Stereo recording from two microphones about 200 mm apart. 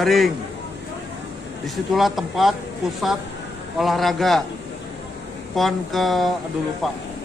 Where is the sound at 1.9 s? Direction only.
Centre (ahead or behind).